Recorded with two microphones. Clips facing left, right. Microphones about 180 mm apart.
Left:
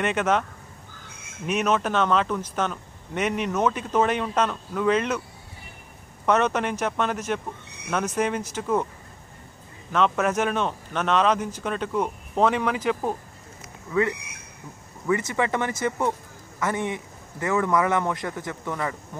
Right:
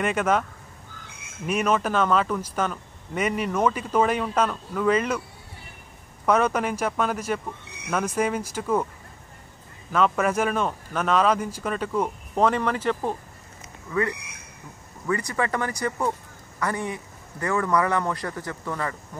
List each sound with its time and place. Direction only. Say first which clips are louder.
0.0 s speech: even; 5° right (ahead or behind)
6.2 s speech: even; 10° right (ahead or behind)
7.9 s speech: even; 5° left (ahead or behind)
8.2 s speech: even; 10° right (ahead or behind)
9.9 s speech: even; centre (ahead or behind)
15.0 s a man's voice: left 2 dB; 20° left (ahead or behind)